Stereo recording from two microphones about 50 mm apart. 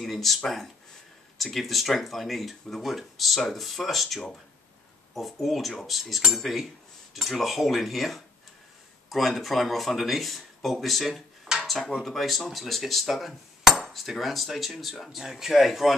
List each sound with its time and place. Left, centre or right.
0.0 s speech: centre
1.4 s speech: centre
11.6 s dishes: centre
12.0 s speech: centre